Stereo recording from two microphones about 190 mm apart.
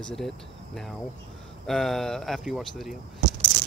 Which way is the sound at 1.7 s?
Centre (ahead or behind).